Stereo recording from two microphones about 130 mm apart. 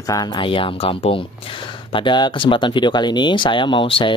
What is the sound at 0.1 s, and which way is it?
Speech, 35° left (ahead or behind).